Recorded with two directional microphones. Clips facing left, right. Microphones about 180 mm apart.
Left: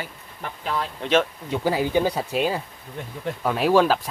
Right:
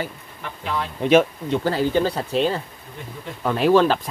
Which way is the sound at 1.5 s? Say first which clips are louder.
Right 1 dB; 10° left (ahead or behind).